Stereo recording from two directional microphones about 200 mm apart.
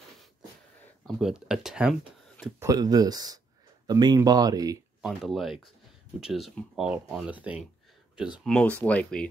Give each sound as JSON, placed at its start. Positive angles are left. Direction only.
{"t": 1.0, "sound": "speech", "side_deg": -5}
{"t": 2.6, "sound": "speech", "side_deg": -20}
{"t": 5.0, "sound": "speech", "side_deg": 0}